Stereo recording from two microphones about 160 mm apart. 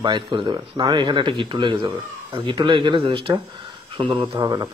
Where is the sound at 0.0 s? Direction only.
30° right (ahead or behind).